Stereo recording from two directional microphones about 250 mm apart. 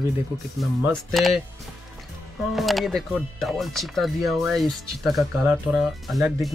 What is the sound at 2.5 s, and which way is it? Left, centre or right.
Speech, centre.